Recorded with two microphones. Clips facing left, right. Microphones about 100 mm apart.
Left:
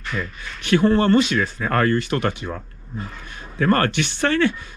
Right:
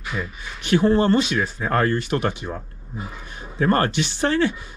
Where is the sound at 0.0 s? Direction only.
10° right (ahead or behind).